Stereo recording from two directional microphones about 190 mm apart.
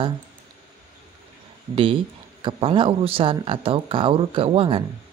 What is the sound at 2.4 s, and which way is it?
Speech, 25° right (ahead or behind).